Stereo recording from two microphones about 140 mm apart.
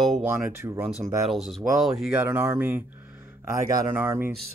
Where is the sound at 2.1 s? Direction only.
15° right (ahead or behind).